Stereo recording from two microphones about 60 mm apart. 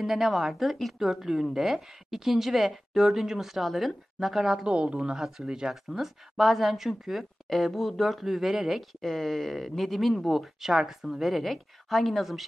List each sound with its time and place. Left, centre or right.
0.0 s speech: centre
4.6 s a woman's voice: centre
5.0 s speech: centre